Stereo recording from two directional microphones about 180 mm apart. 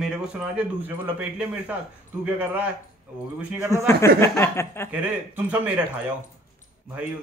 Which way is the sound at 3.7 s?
15° left (ahead or behind).